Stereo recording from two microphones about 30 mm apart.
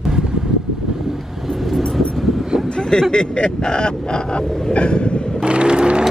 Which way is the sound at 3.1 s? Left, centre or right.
Left.